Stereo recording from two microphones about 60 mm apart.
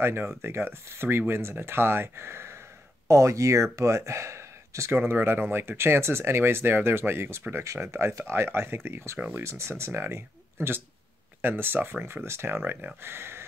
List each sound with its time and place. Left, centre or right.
0.0 s speech: right
3.1 s speech: right
8.3 s speech: right